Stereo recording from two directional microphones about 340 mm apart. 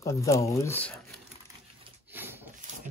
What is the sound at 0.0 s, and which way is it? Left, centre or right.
Speech, centre.